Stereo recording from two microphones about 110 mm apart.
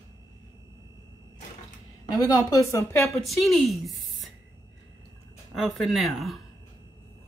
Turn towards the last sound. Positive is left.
turn(degrees=0)  # may be behind; listen again after turning